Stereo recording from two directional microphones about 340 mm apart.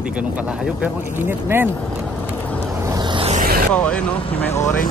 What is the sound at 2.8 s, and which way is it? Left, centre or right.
Vehicle, centre.